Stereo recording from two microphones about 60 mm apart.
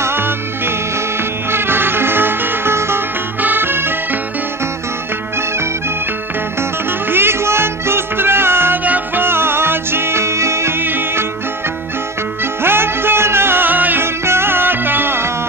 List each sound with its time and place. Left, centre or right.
0.0 s music: right
7.1 s music: right
8.8 s music: right
10.8 s music: right
12.6 s music: right
14.2 s music: right